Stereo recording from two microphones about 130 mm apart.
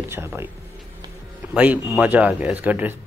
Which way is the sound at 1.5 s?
10° right (ahead or behind).